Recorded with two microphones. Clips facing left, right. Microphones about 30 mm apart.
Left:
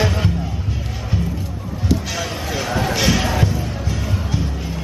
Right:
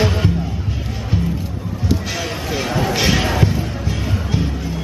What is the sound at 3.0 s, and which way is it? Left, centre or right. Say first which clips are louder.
Basketball bounce: right 1 dB; centre.